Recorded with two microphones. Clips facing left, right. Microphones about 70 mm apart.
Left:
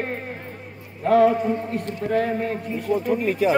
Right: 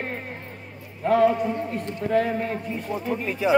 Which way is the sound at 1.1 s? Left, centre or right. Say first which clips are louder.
Left 2 dB; left.